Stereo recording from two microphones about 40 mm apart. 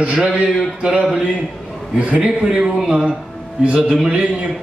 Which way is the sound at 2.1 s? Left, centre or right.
Right.